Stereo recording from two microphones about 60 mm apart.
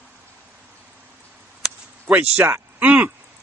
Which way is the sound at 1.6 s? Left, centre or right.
Centre.